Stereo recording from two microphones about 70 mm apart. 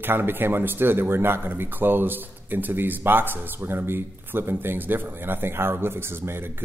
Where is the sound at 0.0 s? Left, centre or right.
Right.